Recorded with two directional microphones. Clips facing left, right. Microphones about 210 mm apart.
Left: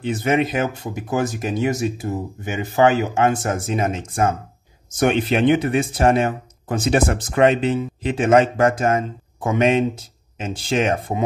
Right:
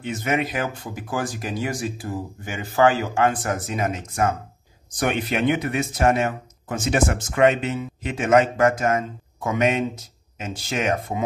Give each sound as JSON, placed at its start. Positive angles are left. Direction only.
{"t": 0.0, "sound": "speech", "side_deg": 30}